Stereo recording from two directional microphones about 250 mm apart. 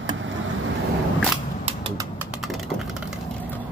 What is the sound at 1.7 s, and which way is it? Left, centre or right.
Bird, centre.